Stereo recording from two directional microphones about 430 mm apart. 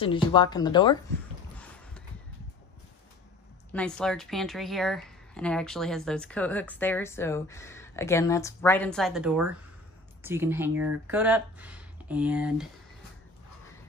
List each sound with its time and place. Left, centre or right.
0.0 s speech: centre
3.7 s speech: centre